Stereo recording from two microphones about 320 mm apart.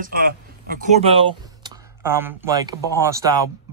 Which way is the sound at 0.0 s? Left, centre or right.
Right.